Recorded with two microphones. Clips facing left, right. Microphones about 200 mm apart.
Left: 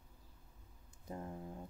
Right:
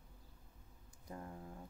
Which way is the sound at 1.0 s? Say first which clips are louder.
Left 4 dB; 25° left (ahead or behind).